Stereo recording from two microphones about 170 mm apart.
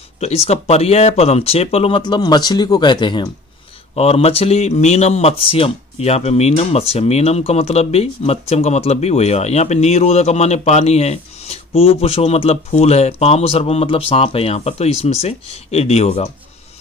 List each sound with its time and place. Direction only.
0.2 s speech: 40° left (ahead or behind)